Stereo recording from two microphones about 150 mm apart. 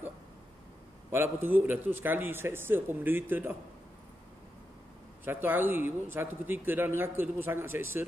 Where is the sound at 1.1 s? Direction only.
15° right (ahead or behind).